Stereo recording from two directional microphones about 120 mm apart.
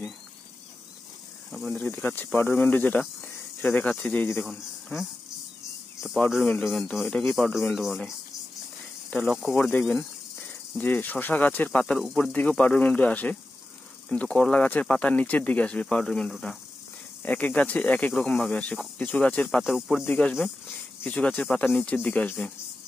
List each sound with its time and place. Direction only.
1.5 s speech: centre (ahead or behind)
1.8 s speech: 15° left (ahead or behind)
6.6 s speech: centre (ahead or behind)
9.2 s speech: centre (ahead or behind)
9.6 s speech: 15° left (ahead or behind)
19.6 s speech: centre (ahead or behind)
20.1 s speech: 10° left (ahead or behind)